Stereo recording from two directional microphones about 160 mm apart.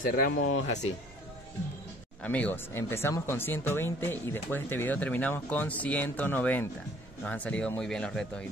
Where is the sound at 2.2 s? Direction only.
10° left (ahead or behind).